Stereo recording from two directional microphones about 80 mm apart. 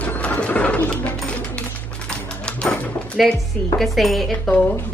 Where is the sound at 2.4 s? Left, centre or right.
Centre.